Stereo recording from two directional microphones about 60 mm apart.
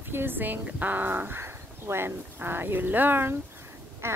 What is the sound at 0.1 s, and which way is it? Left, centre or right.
Speech, right.